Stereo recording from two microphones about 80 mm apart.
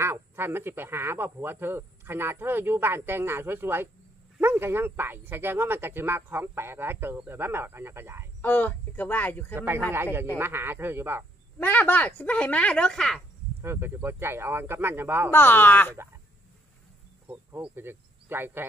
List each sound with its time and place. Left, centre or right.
0.0 s speech: right
8.4 s speech: left
9.6 s speech: right
11.6 s speech: left; by 13.2 s centre
13.6 s speech: right
15.3 s speech: left
17.7 s speech: right